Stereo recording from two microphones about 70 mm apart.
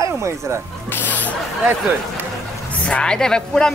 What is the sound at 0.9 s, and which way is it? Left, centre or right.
Music, left.